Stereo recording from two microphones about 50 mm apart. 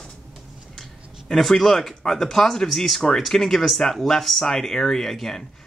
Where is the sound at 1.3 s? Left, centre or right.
Centre.